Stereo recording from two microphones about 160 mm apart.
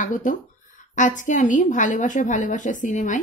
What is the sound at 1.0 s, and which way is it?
A woman's voice, 50° left (ahead or behind).